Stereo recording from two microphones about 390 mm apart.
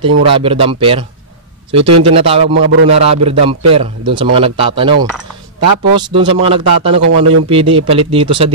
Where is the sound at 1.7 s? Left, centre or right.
Right.